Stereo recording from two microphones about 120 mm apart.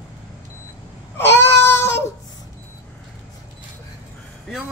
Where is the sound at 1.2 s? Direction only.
20° left (ahead or behind).